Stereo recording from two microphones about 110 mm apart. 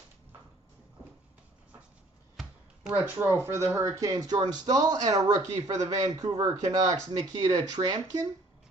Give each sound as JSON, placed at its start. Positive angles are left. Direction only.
{"t": 3.1, "sound": "speech", "side_deg": -20}
{"t": 5.5, "sound": "a man's voice", "side_deg": -90}
{"t": 5.9, "sound": "speech", "side_deg": -35}